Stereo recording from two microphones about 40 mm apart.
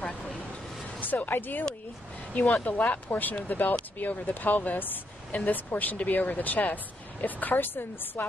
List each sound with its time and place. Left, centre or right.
1.0 s speech: left
2.6 s speech: left